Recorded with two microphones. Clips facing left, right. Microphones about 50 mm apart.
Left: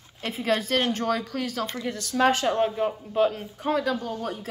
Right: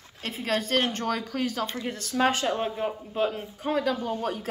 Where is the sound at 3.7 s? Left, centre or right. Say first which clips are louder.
Even; centre.